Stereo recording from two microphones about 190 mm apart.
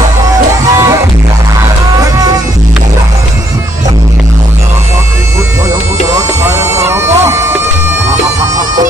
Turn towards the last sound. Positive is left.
turn(degrees=-15)  # may be behind; listen again after turning